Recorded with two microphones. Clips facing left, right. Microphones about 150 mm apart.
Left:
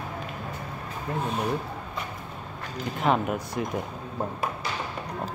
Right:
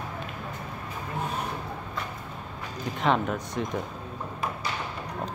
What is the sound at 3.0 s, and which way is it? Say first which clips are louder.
Speech: left 1 dB; 5° left (ahead or behind).